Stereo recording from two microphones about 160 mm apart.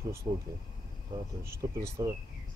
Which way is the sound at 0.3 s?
35° right (ahead or behind).